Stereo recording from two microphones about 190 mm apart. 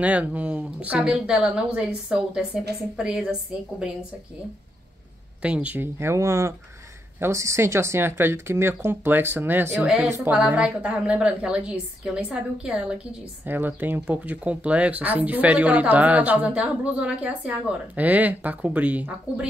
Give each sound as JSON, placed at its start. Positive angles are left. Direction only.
{"t": 0.0, "sound": "a woman's voice", "side_deg": -5}
{"t": 5.4, "sound": "a woman's voice", "side_deg": -5}